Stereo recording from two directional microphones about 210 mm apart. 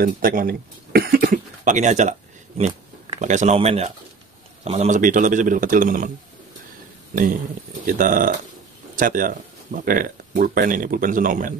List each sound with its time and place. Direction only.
0.0 s speech: 40° right (ahead or behind)
7.8 s speech: 40° right (ahead or behind)